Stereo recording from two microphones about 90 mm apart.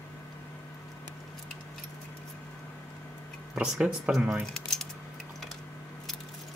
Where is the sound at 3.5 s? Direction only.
10° right (ahead or behind).